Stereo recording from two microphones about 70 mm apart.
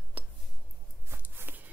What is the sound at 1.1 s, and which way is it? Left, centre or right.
Walk, right.